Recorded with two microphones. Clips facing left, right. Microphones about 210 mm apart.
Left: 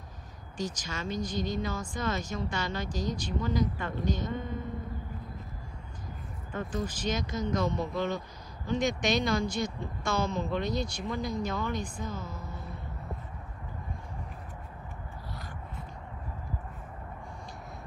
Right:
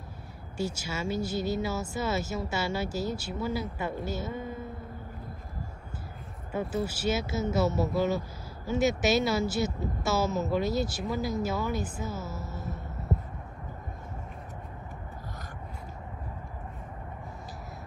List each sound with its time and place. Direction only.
0.6 s a woman's voice: 10° right (ahead or behind)
6.5 s speech: 10° right (ahead or behind)
12.5 s music: 45° right (ahead or behind)